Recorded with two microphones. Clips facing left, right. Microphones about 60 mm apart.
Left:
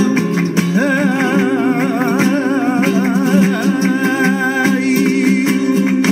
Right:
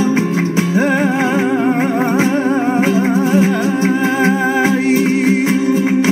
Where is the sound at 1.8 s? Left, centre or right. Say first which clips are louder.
Even; right.